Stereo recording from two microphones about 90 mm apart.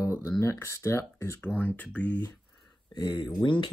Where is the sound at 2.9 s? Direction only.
50° left (ahead or behind).